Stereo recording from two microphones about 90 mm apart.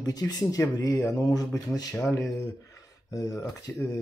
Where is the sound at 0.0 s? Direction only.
45° left (ahead or behind).